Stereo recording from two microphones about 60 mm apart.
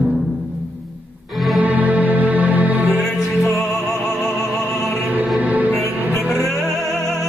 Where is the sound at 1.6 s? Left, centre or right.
Right.